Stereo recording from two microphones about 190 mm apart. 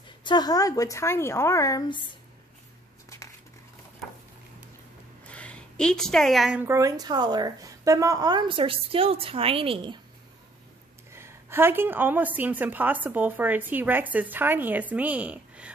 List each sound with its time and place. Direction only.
0.2 s speech: 20° left (ahead or behind)
5.2 s a woman's voice: 5° left (ahead or behind); by 9.9 s 30° right (ahead or behind)
11.1 s a woman's voice: 15° right (ahead or behind)